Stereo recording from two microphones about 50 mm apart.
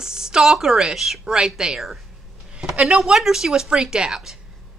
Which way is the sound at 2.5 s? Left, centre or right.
Centre.